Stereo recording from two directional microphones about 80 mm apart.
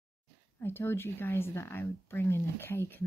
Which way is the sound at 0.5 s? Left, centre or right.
Left.